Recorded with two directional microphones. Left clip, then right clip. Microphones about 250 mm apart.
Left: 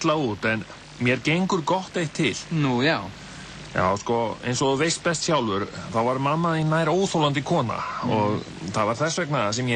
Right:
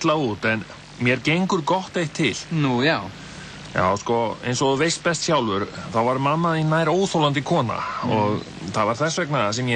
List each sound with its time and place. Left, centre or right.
0.0 s speech: centre